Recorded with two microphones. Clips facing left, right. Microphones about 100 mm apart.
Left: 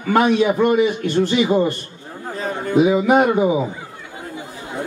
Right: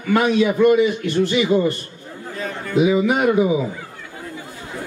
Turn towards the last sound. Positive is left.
turn(degrees=35)  # may be behind; listen again after turning